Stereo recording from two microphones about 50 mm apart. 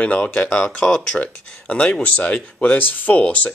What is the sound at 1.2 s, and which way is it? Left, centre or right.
Speech, left.